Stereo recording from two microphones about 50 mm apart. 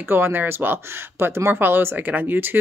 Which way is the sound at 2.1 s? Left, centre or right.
Right.